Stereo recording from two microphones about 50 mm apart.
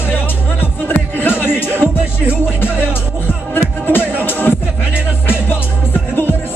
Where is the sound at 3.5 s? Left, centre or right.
Left.